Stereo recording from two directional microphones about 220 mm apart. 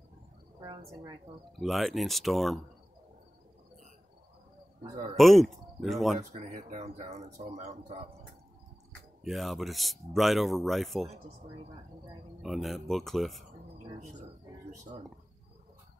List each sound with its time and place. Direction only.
0.6 s a woman's voice: 15° right (ahead or behind)
1.6 s speech: centre (ahead or behind)
5.1 s speech: centre (ahead or behind)
6.1 s speech: 30° right (ahead or behind)
9.2 s speech: centre (ahead or behind)
12.4 s speech: centre (ahead or behind)